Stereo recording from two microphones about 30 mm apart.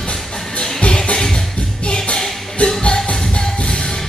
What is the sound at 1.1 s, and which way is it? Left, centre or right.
Music, centre.